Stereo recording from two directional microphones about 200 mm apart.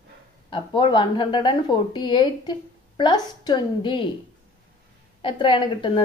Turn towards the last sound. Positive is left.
turn(degrees=25)  # may be behind; listen again after turning